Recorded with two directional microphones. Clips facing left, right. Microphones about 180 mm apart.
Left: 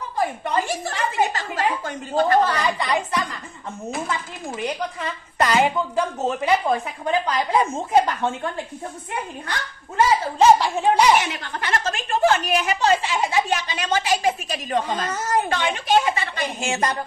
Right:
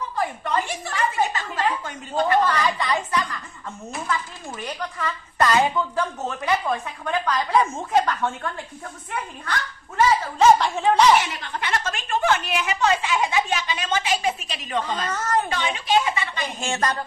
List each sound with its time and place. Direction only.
0.7 s a woman's voice: 40° left (ahead or behind)
2.6 s a woman's voice: 15° left (ahead or behind)
10.6 s a woman's voice: 10° left (ahead or behind)
11.1 s a woman's voice: 55° left (ahead or behind)
11.6 s a woman's voice: 35° left (ahead or behind)
15.0 s speech: 20° left (ahead or behind)
15.5 s a woman's voice: 50° left (ahead or behind)